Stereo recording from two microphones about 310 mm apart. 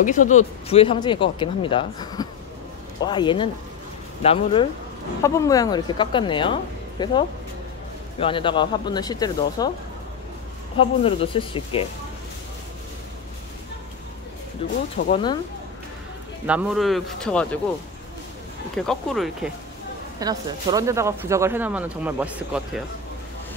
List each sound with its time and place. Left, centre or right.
0.0 s speech: left
10.8 s speech: centre
14.6 s speech: centre
16.4 s speech: centre
18.8 s speech: centre
20.2 s speech: centre